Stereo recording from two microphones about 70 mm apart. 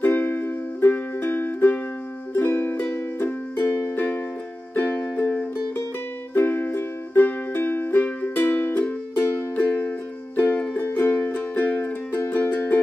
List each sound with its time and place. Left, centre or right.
0.0 s music: left